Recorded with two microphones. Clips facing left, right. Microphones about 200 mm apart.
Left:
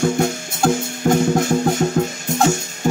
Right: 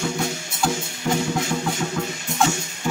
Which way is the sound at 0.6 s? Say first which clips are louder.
Left 7 dB; 50° left (ahead or behind).